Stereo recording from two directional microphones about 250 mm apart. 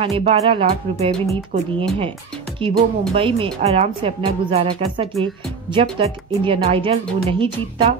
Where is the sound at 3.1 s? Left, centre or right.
Right.